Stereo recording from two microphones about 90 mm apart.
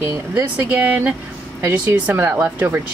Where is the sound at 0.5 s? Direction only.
15° right (ahead or behind).